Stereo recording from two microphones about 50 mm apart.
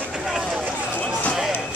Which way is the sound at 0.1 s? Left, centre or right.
Centre.